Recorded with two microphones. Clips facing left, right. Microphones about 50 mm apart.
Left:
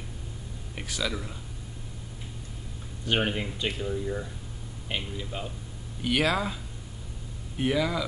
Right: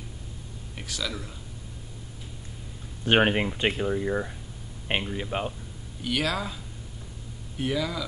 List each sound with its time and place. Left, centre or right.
0.7 s speech: centre
3.1 s speech: right
6.0 s speech: centre